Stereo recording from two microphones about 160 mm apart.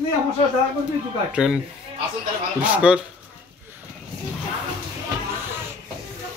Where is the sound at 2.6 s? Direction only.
5° right (ahead or behind).